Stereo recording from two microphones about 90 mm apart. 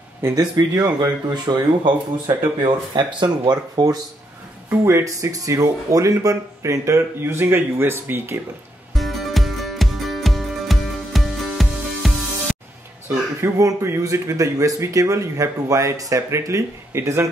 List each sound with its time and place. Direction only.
0.4 s speech: 50° right (ahead or behind)
4.6 s speech: 30° right (ahead or behind)
8.9 s music: centre (ahead or behind)
13.6 s speech: 35° right (ahead or behind)